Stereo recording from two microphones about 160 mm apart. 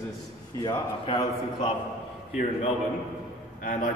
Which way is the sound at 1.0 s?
35° left (ahead or behind).